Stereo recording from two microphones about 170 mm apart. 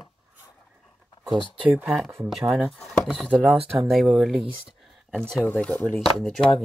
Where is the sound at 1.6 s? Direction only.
10° right (ahead or behind).